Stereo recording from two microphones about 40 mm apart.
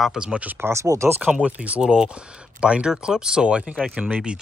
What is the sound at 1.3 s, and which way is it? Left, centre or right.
Speech, right.